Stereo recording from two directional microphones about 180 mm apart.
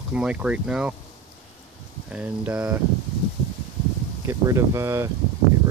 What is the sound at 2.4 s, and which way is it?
Speech, 10° right (ahead or behind).